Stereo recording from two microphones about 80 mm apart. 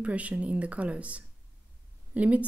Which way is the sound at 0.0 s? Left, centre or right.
Centre.